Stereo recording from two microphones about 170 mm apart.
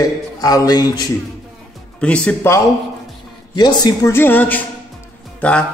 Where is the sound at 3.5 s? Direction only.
25° left (ahead or behind).